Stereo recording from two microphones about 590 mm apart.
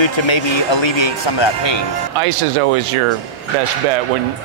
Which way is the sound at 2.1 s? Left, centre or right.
Right.